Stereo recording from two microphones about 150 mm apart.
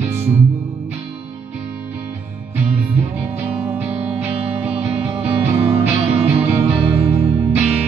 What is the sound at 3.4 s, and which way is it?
Music, 10° right (ahead or behind).